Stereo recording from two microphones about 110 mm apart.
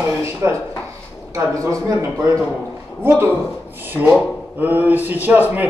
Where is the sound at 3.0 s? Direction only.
20° right (ahead or behind).